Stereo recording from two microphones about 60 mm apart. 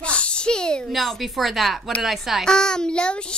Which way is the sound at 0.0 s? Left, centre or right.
Centre.